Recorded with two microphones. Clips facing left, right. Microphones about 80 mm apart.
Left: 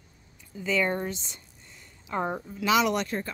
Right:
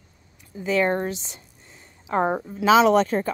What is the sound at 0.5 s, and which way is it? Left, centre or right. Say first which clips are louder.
Speech: right 4 dB; centre.